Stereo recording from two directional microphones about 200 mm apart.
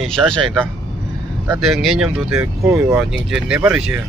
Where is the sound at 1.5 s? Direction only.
Centre (ahead or behind).